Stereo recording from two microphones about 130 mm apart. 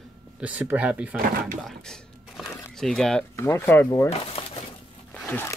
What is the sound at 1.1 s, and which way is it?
Speech, 90° right.